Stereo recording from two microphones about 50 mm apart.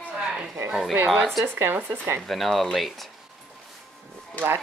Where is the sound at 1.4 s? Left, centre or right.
Right.